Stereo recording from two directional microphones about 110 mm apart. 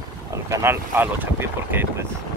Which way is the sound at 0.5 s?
20° right (ahead or behind).